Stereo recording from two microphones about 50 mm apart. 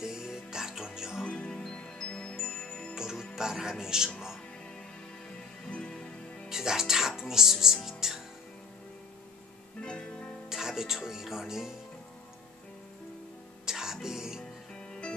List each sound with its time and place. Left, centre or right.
0.0 s music: centre
1.2 s music: left
2.9 s music: centre
3.3 s speech: centre
5.7 s music: centre
6.5 s music: centre
9.8 s music: left
10.5 s speech: centre
13.7 s music: centre